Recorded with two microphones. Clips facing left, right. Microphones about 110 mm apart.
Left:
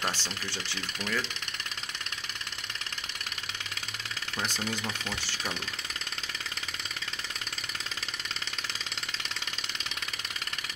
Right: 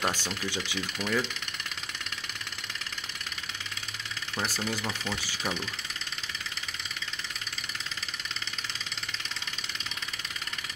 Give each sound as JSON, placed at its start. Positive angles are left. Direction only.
{"t": 0.0, "sound": "speech", "side_deg": -15}
{"t": 4.5, "sound": "speech", "side_deg": -5}